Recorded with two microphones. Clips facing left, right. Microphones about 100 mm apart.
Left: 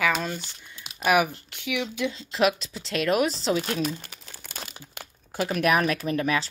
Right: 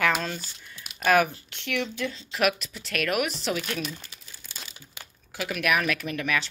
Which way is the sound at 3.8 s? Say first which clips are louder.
Left 7 dB; 50° left (ahead or behind).